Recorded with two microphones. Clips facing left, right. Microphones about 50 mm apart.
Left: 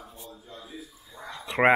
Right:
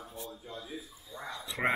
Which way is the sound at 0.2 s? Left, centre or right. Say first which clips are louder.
Right 4 dB; right.